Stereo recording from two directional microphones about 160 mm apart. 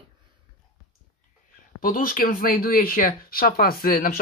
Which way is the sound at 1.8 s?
60° left (ahead or behind).